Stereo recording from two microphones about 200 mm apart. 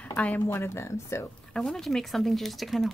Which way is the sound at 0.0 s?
5° left (ahead or behind).